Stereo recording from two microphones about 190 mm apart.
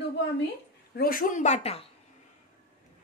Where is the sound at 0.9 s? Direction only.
50° left (ahead or behind); by 1.9 s 30° left (ahead or behind).